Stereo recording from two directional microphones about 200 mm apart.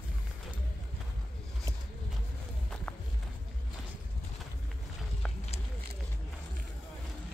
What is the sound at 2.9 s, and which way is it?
Run, 5° left (ahead or behind).